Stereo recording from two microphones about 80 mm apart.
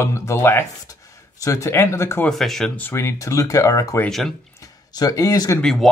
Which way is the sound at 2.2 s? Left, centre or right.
Centre.